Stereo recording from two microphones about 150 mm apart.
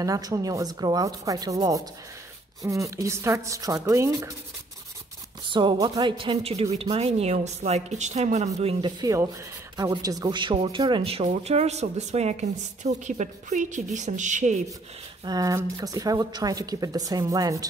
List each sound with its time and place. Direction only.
0.0 s speech: 25° right (ahead or behind)
5.5 s a woman's voice: 30° right (ahead or behind)
9.0 s speech: 20° right (ahead or behind)
11.1 s a woman's voice: 45° right (ahead or behind)
15.2 s speech: 25° right (ahead or behind)